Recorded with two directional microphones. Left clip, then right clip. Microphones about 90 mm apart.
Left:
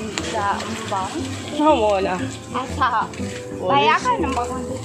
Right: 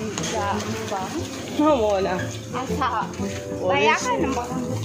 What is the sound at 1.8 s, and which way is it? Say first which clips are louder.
Speech: left 3 dB; centre (ahead or behind).